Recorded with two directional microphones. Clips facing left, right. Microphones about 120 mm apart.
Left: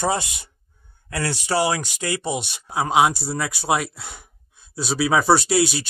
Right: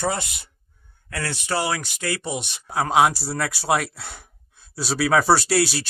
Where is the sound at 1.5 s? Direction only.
15° left (ahead or behind); by 5.8 s centre (ahead or behind).